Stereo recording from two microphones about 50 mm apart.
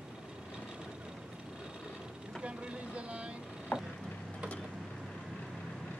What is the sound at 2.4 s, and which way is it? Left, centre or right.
Speech, right.